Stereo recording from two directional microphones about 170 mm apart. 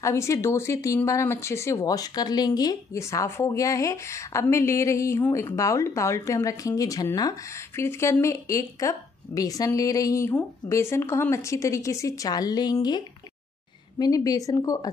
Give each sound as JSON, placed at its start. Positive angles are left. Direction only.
{"t": 0.0, "sound": "a woman's voice", "side_deg": 15}